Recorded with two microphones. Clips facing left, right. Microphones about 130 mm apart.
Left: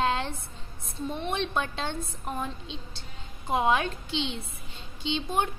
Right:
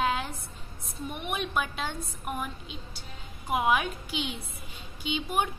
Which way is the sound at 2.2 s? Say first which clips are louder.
Even; 25° left (ahead or behind).